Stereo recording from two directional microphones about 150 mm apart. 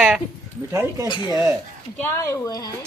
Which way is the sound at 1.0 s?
30° left (ahead or behind).